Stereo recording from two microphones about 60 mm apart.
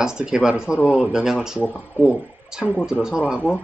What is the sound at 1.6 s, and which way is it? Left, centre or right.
Speech, left.